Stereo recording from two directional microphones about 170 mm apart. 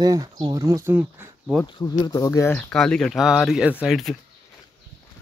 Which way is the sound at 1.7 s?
25° left (ahead or behind).